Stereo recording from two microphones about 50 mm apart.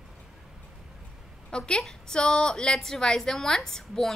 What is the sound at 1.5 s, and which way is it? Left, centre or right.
A woman's voice, centre.